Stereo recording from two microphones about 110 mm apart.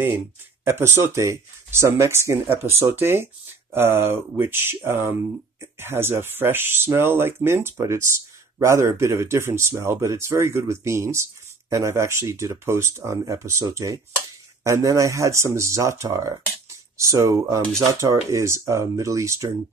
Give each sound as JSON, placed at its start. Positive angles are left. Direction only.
{"t": 0.7, "sound": "speech", "side_deg": -20}